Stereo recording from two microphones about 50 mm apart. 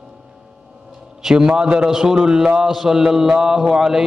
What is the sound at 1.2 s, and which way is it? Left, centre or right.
A man's voice, centre.